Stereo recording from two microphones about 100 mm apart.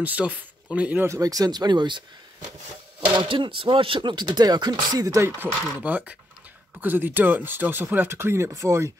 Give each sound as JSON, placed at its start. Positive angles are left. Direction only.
{"t": 0.0, "sound": "speech", "side_deg": -15}
{"t": 1.0, "sound": "speech", "side_deg": -35}
{"t": 3.2, "sound": "speech", "side_deg": -55}
{"t": 5.4, "sound": "speech", "side_deg": -20}